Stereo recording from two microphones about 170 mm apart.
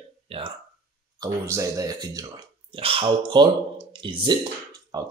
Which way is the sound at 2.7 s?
35° right (ahead or behind).